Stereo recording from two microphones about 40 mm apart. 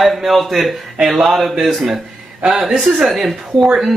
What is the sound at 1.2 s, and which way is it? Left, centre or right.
Speech, centre.